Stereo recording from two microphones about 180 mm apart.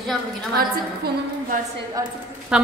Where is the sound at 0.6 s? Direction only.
55° right (ahead or behind).